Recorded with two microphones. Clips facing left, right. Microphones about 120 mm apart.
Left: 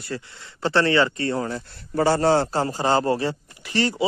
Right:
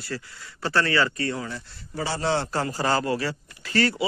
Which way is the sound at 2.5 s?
25° left (ahead or behind).